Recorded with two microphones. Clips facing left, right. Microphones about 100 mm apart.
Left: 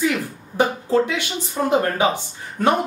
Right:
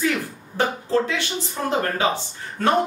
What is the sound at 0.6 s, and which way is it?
A man's voice, 15° left (ahead or behind).